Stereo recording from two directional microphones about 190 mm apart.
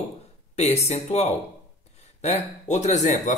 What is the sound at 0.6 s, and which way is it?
Speech, 35° left (ahead or behind).